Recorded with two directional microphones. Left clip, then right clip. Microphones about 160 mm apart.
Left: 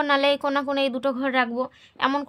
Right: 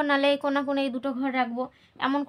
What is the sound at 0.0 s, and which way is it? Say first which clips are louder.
A woman's voice: left 2 dB; 40° left (ahead or behind).